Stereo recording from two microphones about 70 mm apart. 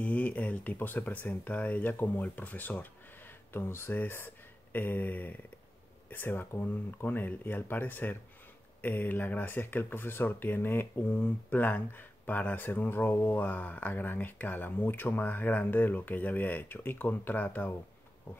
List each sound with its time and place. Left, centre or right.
0.0 s speech: left